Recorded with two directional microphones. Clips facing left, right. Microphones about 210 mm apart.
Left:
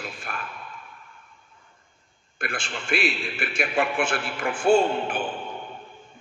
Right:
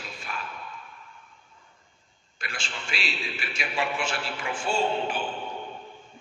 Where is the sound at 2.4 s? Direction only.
55° left (ahead or behind).